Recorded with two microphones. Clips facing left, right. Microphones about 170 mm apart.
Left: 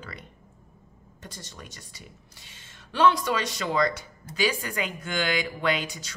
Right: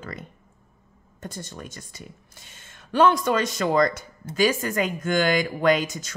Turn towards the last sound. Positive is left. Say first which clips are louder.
# right 7 dB
turn(degrees=-45)  # may be behind; listen again after turning